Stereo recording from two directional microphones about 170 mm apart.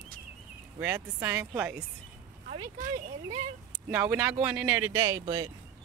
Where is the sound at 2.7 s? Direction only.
50° right (ahead or behind).